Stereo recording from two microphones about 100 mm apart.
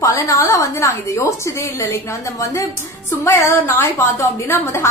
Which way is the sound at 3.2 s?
25° left (ahead or behind).